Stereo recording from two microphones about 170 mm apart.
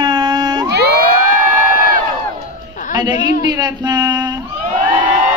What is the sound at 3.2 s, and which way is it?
Speech, 45° left (ahead or behind).